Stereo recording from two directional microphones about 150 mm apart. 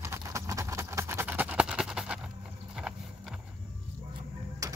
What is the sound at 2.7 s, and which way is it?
Clip-clop, centre (ahead or behind).